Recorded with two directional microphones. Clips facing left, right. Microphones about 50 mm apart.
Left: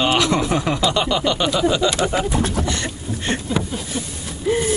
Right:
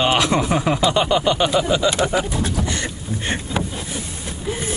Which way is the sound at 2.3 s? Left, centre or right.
Left.